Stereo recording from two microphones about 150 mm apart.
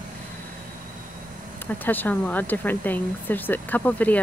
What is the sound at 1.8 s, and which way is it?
A woman's voice, 10° left (ahead or behind).